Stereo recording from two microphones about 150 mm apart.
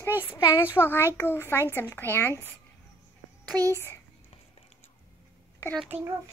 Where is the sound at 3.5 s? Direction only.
10° left (ahead or behind).